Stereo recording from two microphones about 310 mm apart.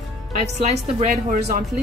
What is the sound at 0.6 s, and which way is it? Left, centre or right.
A woman's voice, right.